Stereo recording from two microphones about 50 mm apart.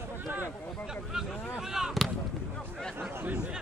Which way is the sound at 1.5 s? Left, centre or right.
Centre.